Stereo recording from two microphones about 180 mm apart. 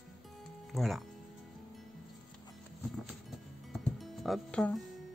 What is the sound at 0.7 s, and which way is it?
Speech, centre (ahead or behind).